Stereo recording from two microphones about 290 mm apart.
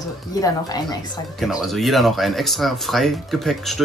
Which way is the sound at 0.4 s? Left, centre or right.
Centre.